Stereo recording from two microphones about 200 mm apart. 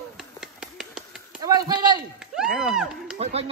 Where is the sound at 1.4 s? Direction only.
20° right (ahead or behind).